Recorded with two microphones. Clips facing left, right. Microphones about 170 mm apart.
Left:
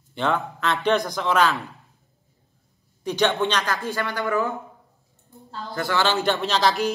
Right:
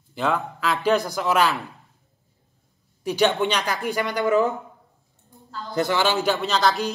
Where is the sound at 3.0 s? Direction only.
10° right (ahead or behind).